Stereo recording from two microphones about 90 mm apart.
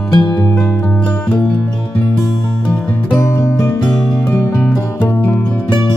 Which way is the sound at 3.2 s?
30° left (ahead or behind).